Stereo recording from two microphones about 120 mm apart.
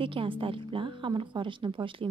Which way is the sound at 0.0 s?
45° right (ahead or behind).